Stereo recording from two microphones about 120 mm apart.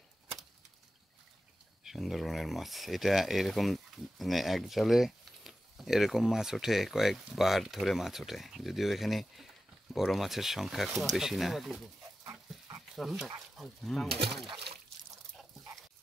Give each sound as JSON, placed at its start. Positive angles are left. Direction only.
{"t": 1.9, "sound": "speech", "side_deg": 0}
{"t": 12.3, "sound": "dog", "side_deg": -30}
{"t": 12.9, "sound": "speech", "side_deg": 0}